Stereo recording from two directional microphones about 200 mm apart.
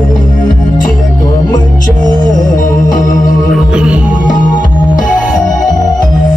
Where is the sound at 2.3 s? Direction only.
40° left (ahead or behind).